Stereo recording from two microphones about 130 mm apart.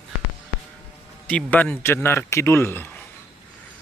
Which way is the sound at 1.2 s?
10° left (ahead or behind).